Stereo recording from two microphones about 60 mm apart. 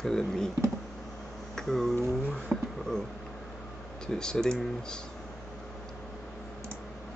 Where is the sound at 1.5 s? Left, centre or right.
Centre.